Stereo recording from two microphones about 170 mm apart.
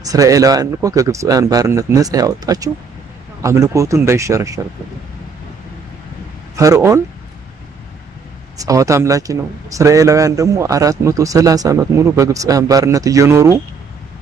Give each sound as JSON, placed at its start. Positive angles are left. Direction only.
{"t": 0.0, "sound": "a man's voice", "side_deg": -20}
{"t": 6.5, "sound": "speech", "side_deg": -20}
{"t": 8.5, "sound": "a man's voice", "side_deg": -20}